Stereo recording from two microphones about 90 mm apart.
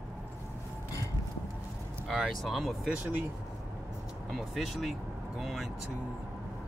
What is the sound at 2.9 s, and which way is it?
Speech, 20° right (ahead or behind).